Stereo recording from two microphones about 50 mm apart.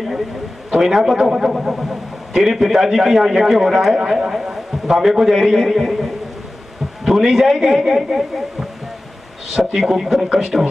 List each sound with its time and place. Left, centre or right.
0.7 s a man's voice: centre